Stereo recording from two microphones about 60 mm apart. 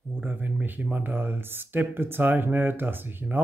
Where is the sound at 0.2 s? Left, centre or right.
Right.